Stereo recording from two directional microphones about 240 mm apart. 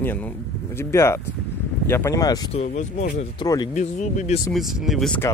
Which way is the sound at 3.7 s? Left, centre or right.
Left.